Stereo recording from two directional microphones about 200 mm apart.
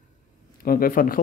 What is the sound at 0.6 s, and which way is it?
Speech, 45° left (ahead or behind).